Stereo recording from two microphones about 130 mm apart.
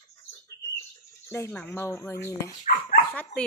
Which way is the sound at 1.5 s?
15° left (ahead or behind).